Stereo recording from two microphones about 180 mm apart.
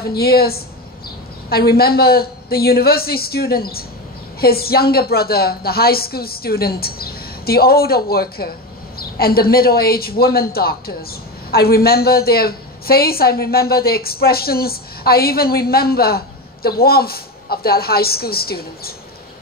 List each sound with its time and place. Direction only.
0.0 s a woman's voice: 60° left (ahead or behind)